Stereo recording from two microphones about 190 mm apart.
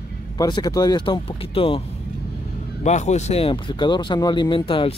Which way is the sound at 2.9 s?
35° left (ahead or behind).